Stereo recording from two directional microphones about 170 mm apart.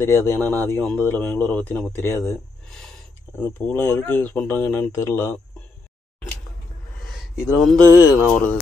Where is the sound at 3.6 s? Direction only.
10° left (ahead or behind).